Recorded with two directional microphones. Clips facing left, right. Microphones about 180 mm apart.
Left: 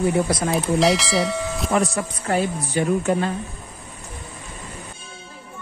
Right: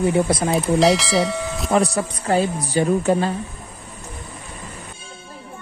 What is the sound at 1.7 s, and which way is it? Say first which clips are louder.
Speech: right 4 dB; 35° right (ahead or behind).